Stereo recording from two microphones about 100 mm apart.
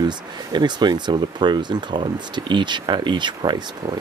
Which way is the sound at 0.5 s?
45° right (ahead or behind).